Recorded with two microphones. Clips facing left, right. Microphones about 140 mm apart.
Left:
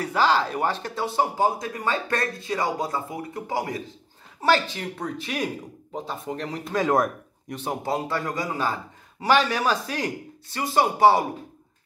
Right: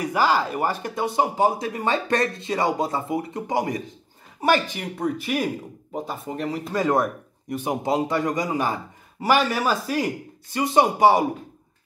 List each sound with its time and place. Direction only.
0.0 s speech: 10° right (ahead or behind)
7.5 s speech: 15° right (ahead or behind)